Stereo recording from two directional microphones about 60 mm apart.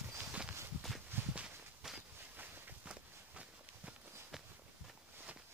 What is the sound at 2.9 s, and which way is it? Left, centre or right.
Walk, right.